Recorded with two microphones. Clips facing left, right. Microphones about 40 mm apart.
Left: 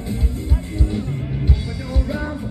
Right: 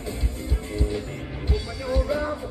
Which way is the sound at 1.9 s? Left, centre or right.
Centre.